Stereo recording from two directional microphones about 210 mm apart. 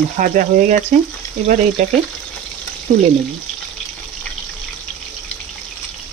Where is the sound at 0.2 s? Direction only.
40° right (ahead or behind).